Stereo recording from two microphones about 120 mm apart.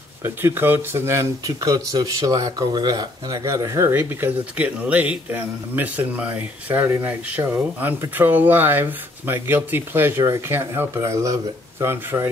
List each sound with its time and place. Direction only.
0.2 s speech: 20° right (ahead or behind)